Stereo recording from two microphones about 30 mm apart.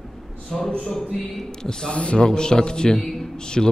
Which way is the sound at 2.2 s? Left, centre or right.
Left.